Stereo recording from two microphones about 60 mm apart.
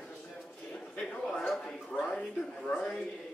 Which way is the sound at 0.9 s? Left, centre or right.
Centre.